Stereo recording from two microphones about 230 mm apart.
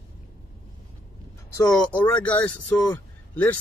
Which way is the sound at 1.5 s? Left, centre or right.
Centre.